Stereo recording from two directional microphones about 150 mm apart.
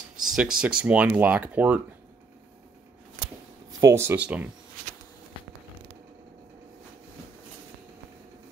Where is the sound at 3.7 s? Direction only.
20° right (ahead or behind).